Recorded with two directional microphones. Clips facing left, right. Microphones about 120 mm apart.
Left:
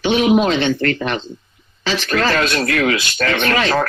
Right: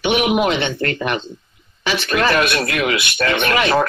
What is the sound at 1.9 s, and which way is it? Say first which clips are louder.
Speech: even; 20° right (ahead or behind).